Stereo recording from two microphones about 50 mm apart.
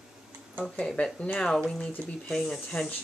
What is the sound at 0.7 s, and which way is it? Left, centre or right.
Speech, left.